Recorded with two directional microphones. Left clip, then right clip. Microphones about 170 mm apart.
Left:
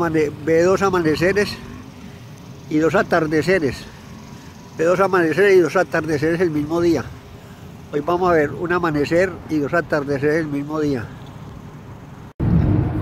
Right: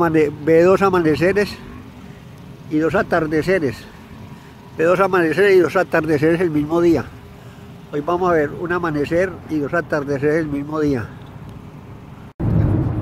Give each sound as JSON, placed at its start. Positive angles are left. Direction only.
{"t": 0.0, "sound": "speech", "side_deg": -40}
{"t": 2.7, "sound": "speech", "side_deg": 10}
{"t": 4.7, "sound": "speech", "side_deg": -40}
{"t": 7.9, "sound": "speech", "side_deg": -5}